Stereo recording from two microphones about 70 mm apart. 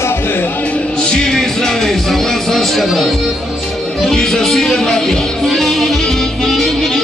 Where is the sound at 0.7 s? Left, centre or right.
Centre.